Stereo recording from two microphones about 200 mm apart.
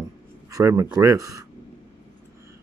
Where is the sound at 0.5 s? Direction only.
15° right (ahead or behind).